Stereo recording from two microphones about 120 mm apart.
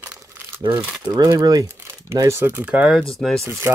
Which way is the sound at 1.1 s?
30° right (ahead or behind).